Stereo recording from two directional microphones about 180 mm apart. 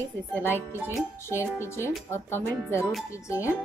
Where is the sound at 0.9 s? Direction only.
15° left (ahead or behind).